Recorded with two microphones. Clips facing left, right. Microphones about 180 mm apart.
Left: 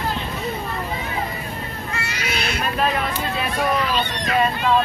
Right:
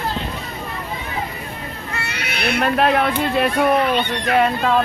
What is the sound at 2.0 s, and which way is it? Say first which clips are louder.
Speech: right 1 dB; 60° right (ahead or behind).